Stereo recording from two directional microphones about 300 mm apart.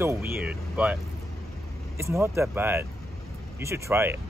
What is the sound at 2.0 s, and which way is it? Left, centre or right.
Speech, centre.